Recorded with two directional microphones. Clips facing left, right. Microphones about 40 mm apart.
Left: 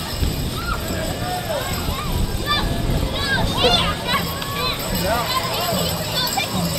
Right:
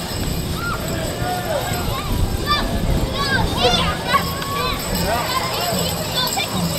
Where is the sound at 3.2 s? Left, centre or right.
Left.